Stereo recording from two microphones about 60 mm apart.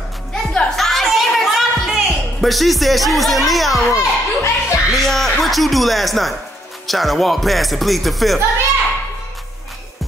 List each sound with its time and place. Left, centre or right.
0.3 s music: centre
3.9 s a sound: left
4.9 s speech: centre